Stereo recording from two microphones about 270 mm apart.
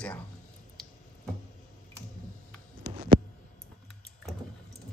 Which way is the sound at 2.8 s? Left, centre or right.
Right.